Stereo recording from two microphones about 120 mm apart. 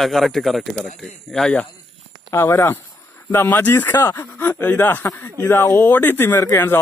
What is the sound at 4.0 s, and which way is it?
Speech, 25° left (ahead or behind).